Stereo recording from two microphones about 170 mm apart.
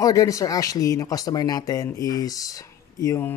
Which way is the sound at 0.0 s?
20° left (ahead or behind).